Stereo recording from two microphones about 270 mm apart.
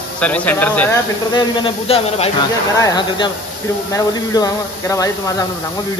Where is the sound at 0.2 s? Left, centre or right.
Centre.